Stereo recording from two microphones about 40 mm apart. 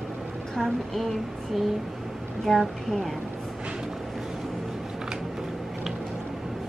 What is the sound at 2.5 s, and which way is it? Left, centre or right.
Speech, centre.